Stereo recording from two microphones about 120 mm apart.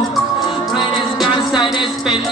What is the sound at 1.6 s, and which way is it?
Speech, 45° left (ahead or behind).